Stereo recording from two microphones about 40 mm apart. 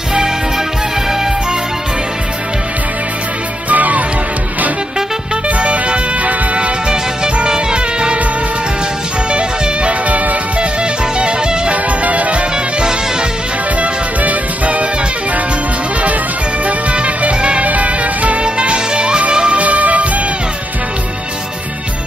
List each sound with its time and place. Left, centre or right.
3.6 s music: right
5.6 s music: right
9.3 s music: right
10.8 s music: right
11.7 s music: right
13.7 s music: right
16.6 s music: right
19.6 s music: right